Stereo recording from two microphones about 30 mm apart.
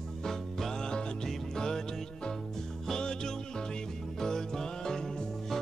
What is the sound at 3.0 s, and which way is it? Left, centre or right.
Music, left.